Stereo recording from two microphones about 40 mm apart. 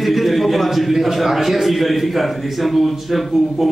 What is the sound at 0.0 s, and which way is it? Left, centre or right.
A man's voice, centre.